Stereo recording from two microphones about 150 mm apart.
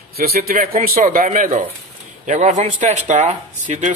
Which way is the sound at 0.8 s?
70° right (ahead or behind).